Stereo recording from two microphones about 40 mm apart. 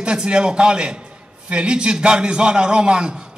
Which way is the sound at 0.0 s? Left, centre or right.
Right.